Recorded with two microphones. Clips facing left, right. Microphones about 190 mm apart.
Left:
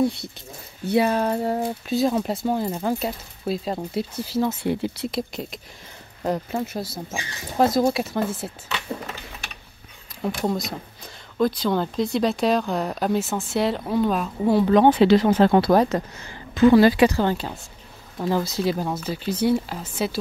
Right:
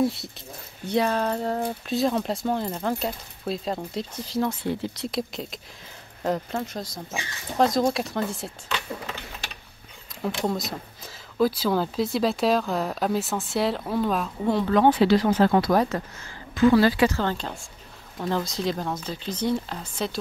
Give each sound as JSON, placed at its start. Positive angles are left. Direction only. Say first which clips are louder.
{"t": 0.0, "sound": "speech", "louder": "left 2 dB", "side_deg": 0}
{"t": 0.8, "sound": "speech", "louder": "left 3 dB", "side_deg": 10}
{"t": 10.4, "sound": "speech", "louder": "left 2 dB", "side_deg": 0}
{"t": 14.4, "sound": "speech", "louder": "left 4 dB", "side_deg": 10}